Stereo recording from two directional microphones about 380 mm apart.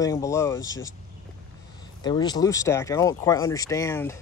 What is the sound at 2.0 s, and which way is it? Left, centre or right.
Speech, centre.